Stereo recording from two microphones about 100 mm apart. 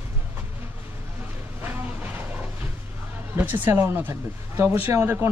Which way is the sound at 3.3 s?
20° right (ahead or behind).